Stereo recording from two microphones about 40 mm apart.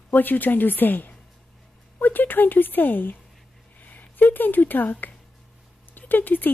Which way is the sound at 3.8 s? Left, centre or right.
Left.